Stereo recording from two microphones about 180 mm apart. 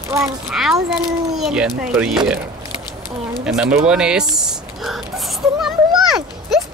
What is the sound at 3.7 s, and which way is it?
Speech, 5° right (ahead or behind).